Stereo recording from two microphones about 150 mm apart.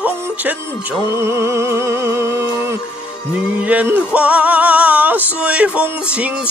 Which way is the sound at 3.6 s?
10° right (ahead or behind).